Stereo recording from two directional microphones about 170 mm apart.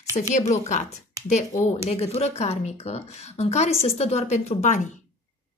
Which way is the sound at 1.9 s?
40° left (ahead or behind).